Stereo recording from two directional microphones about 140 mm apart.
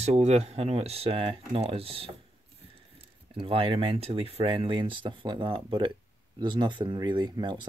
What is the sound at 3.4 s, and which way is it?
Speech, 40° right (ahead or behind).